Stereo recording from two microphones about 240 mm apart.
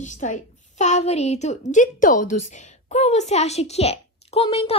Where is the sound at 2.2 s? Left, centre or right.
Left.